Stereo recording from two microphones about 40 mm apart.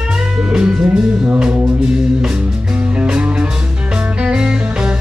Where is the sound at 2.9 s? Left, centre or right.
Right.